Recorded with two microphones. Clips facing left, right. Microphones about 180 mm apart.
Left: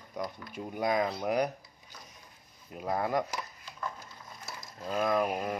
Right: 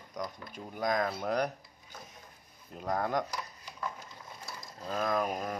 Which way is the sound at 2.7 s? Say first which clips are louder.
Left 1 dB; 5° left (ahead or behind).